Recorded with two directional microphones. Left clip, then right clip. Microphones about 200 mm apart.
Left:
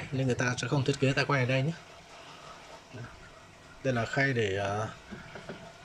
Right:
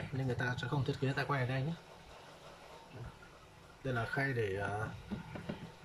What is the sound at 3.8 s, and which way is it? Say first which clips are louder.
Speech: left 8 dB; 10° left (ahead or behind).